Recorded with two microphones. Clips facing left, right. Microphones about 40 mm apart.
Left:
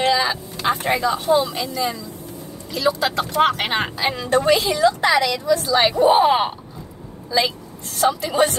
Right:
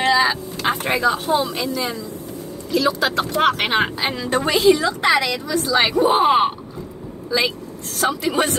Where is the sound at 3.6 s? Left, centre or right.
Right.